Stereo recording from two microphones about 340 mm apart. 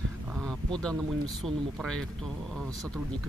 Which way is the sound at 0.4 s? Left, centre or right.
Centre.